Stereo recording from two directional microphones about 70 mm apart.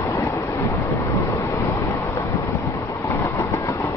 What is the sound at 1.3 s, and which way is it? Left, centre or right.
Vehicle, left.